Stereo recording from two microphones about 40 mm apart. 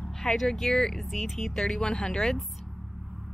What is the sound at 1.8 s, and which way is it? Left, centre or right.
Speech, left.